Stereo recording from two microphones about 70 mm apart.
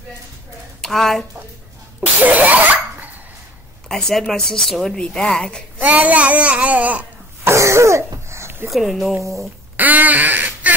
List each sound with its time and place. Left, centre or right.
0.7 s a woman's voice: centre
2.0 s sneeze: right
3.9 s a woman's voice: centre
5.8 s babbling: right
7.4 s throat clearing: right
8.3 s a sound: right
8.6 s a woman's voice: centre
9.8 s duck: right